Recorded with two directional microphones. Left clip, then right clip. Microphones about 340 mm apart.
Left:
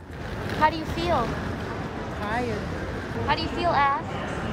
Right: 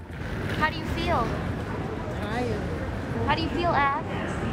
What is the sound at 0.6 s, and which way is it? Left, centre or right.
Vehicle, left.